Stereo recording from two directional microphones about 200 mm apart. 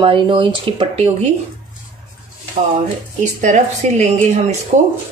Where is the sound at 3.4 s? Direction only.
35° right (ahead or behind).